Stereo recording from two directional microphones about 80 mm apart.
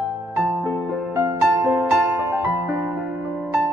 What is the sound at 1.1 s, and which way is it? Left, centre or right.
Music, right.